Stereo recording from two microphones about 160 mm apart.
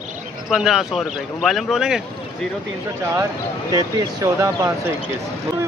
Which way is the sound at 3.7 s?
20° right (ahead or behind).